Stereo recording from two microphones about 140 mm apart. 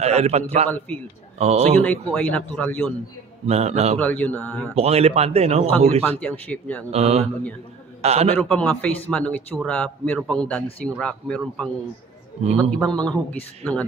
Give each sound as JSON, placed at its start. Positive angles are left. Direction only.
{"t": 0.0, "sound": "a man's voice", "side_deg": -50}
{"t": 0.7, "sound": "speech", "side_deg": 10}
{"t": 1.4, "sound": "a man's voice", "side_deg": -50}
{"t": 1.8, "sound": "speech", "side_deg": 10}
{"t": 3.4, "sound": "a man's voice", "side_deg": -50}
{"t": 4.0, "sound": "speech", "side_deg": 10}
{"t": 4.7, "sound": "a man's voice", "side_deg": -45}
{"t": 6.0, "sound": "speech", "side_deg": 10}
{"t": 6.9, "sound": "a man's voice", "side_deg": -45}
{"t": 8.4, "sound": "speech", "side_deg": 5}
{"t": 12.7, "sound": "speech", "side_deg": 5}